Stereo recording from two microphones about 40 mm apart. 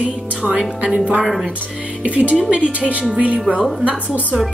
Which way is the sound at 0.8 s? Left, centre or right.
Right.